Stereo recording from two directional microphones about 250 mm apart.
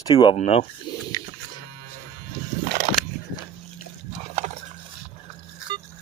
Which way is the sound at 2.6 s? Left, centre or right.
Right.